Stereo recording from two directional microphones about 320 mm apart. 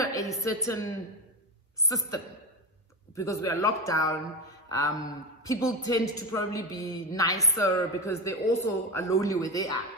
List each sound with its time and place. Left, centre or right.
0.0 s a woman's voice: centre
1.9 s a man's voice: centre